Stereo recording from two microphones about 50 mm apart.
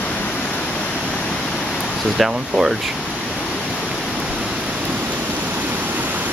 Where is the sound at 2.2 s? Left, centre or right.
Centre.